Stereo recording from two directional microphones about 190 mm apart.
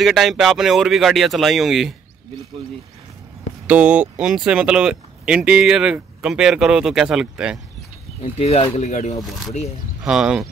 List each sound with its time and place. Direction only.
0.0 s speech: centre (ahead or behind)
3.6 s speech: 5° right (ahead or behind)
8.2 s speech: 35° left (ahead or behind)
10.0 s speech: 5° right (ahead or behind)